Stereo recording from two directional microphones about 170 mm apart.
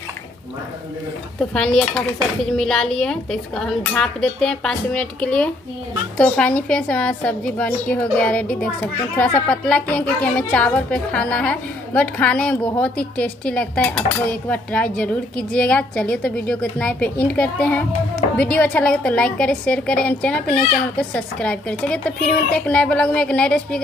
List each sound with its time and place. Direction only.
1.4 s a woman's voice: 5° left (ahead or behind)